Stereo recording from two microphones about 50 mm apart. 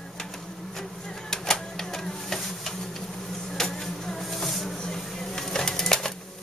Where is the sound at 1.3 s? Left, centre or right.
Centre.